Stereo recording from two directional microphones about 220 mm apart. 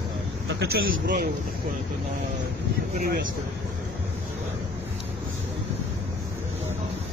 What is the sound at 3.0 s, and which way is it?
Speech, 40° right (ahead or behind).